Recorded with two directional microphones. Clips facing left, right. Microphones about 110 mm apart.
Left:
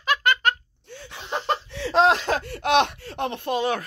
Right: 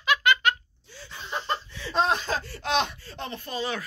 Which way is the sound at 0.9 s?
65° left (ahead or behind).